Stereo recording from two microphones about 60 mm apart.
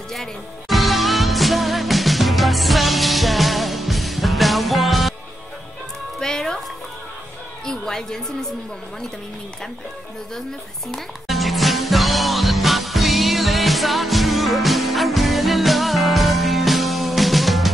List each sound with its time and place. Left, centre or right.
0.1 s music: centre
6.1 s music: centre
7.6 s a sound: centre
11.2 s music: centre